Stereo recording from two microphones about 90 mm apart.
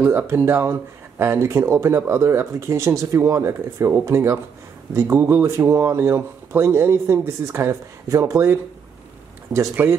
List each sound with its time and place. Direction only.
0.0 s speech: 25° right (ahead or behind)